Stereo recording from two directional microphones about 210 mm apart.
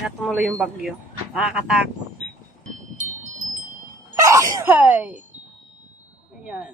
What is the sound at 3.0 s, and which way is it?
Wind chime, 35° right (ahead or behind).